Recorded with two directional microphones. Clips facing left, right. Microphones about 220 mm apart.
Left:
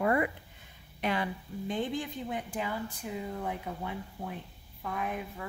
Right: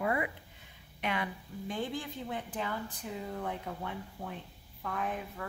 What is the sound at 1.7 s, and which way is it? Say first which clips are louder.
Speech: left 3 dB; 20° left (ahead or behind).